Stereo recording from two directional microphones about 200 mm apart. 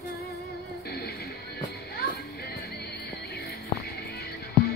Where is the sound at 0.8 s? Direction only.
50° left (ahead or behind).